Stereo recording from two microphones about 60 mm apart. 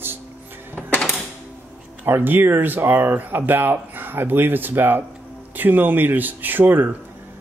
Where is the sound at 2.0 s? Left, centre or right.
Right.